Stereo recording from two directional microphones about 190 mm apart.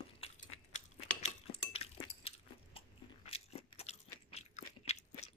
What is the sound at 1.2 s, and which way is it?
Chink, 30° left (ahead or behind).